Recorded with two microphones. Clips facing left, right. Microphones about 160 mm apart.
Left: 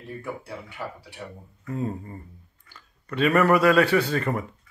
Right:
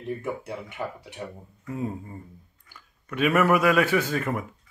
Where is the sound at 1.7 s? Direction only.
5° right (ahead or behind).